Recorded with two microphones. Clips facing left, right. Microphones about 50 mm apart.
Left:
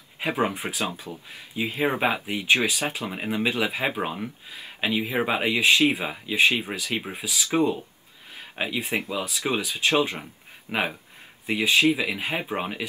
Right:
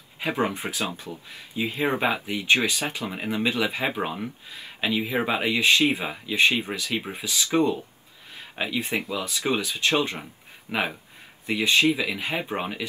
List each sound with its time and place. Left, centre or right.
0.2 s speech: centre
0.7 s speech: left
1.5 s speech: centre
2.2 s speech: centre